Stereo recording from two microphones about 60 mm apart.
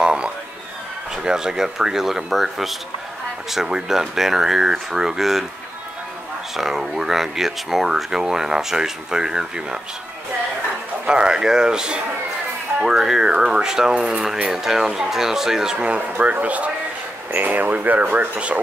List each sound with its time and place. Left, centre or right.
0.0 s a sound: centre
1.1 s speech: centre
6.5 s speech: centre
11.1 s speech: centre
15.8 s speech: right